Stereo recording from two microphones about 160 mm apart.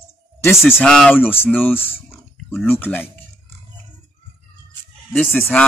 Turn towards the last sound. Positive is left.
turn(degrees=10)  # may be behind; listen again after turning